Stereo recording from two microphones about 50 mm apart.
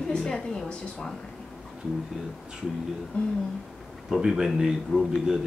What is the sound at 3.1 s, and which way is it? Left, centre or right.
Speech, left.